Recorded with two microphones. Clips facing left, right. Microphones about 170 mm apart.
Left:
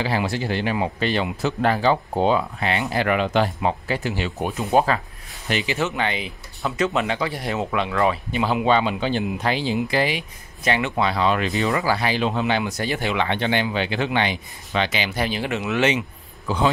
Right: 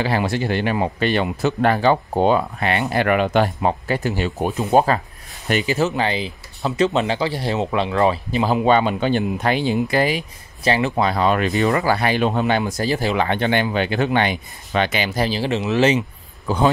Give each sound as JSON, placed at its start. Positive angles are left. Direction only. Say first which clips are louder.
{"t": 0.0, "sound": "speech", "louder": "right 3 dB", "side_deg": -60}
{"t": 8.6, "sound": "speech", "louder": "right 3 dB", "side_deg": -50}
{"t": 16.5, "sound": "speech", "louder": "right 3 dB", "side_deg": -45}